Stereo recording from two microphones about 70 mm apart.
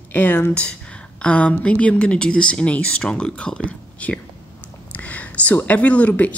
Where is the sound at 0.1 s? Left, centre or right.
Left.